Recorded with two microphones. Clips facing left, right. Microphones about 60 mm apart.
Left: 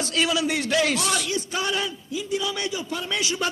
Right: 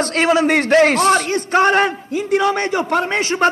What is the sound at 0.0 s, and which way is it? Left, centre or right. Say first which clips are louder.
Speech: right 9 dB; right.